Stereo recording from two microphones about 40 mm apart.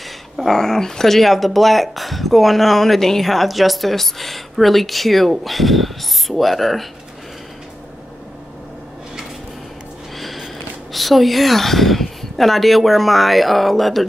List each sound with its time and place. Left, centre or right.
0.4 s speech: centre
10.1 s speech: centre